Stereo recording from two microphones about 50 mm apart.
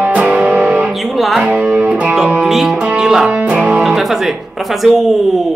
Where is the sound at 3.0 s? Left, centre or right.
Centre.